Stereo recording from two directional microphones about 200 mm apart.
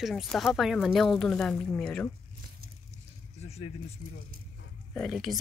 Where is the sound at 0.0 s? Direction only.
Centre (ahead or behind).